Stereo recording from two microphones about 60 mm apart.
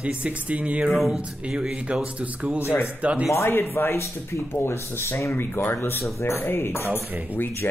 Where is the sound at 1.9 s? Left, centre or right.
Centre.